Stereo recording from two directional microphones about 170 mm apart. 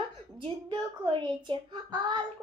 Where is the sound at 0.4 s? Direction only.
30° right (ahead or behind).